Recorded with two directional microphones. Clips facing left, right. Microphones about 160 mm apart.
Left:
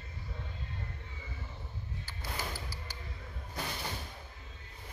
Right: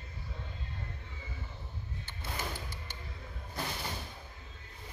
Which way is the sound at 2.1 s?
25° right (ahead or behind).